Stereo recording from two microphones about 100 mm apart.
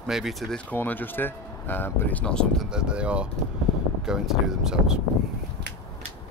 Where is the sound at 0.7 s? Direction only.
20° left (ahead or behind).